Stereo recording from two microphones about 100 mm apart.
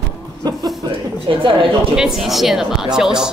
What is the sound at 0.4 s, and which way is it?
Speech, 40° right (ahead or behind).